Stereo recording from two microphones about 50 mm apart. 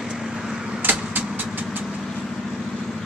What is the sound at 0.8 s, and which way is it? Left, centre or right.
Vehicle, right.